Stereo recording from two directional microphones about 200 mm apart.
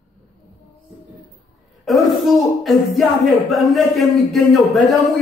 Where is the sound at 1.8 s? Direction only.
Centre (ahead or behind).